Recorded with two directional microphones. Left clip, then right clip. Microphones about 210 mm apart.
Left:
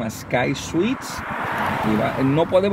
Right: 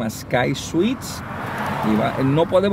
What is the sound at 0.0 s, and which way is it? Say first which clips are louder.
Speech: right 1 dB; centre (ahead or behind).